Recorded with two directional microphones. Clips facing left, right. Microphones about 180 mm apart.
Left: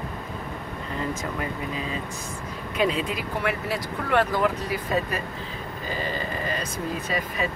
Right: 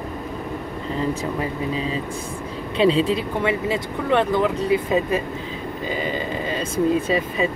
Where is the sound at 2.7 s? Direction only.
30° right (ahead or behind).